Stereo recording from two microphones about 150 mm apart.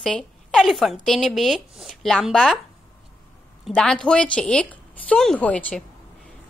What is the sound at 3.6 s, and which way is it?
A woman's voice, 5° left (ahead or behind).